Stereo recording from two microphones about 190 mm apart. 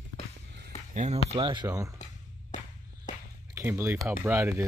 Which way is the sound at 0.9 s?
35° right (ahead or behind).